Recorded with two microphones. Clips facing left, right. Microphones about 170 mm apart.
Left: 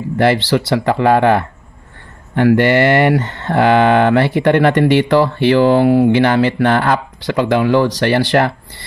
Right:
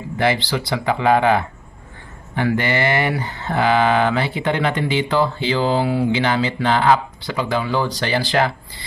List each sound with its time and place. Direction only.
0.2 s speech: 70° left (ahead or behind)